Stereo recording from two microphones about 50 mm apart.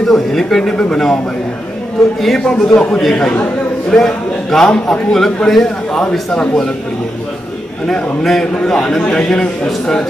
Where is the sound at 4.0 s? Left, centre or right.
Centre.